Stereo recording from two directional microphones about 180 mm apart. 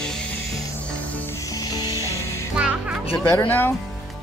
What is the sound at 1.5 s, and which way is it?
Music, 20° left (ahead or behind).